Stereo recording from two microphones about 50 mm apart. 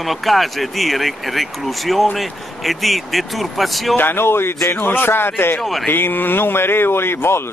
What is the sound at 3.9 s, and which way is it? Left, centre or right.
Speech, left.